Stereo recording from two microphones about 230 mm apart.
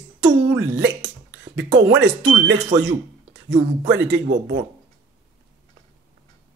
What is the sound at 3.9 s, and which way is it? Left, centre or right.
Speech, right.